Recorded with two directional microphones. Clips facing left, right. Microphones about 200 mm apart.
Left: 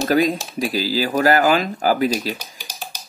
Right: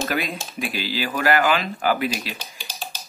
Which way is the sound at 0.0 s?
40° left (ahead or behind).